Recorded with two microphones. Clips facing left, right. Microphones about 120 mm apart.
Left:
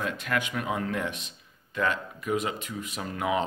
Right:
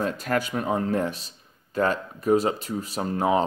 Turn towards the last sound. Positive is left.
turn(degrees=-35)  # may be behind; listen again after turning